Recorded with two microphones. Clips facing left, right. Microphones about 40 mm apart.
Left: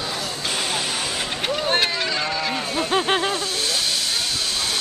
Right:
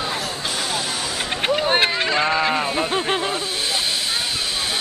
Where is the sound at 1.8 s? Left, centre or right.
Right.